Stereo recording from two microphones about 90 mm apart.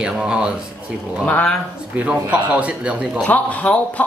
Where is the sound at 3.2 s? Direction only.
15° left (ahead or behind).